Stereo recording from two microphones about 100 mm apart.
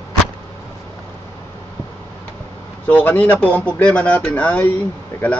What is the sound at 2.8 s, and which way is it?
Speech, 15° left (ahead or behind).